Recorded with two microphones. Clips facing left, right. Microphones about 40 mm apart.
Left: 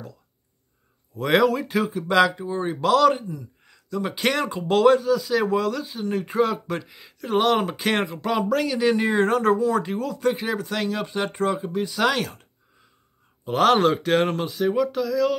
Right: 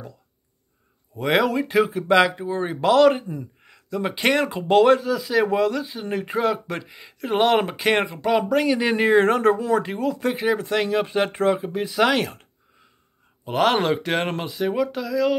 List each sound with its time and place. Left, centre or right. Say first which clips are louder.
1.1 s speech: left 1 dB; centre
13.5 s speech: left 2 dB; centre